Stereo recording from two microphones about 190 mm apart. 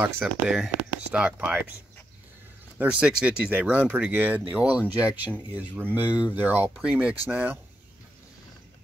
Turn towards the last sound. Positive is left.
turn(degrees=-10)  # may be behind; listen again after turning